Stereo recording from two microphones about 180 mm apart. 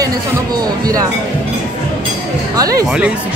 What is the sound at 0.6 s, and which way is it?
Speech, 20° right (ahead or behind).